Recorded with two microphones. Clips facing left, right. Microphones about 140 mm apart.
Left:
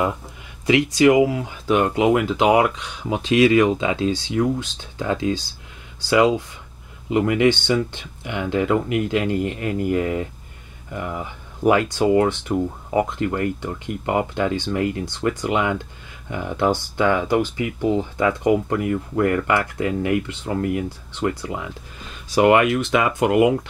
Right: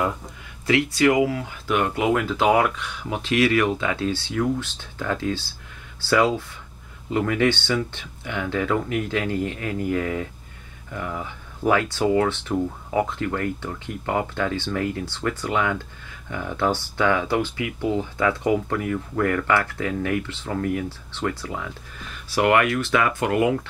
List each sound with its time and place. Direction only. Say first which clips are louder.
0.7 s speech: left 4 dB; 15° left (ahead or behind)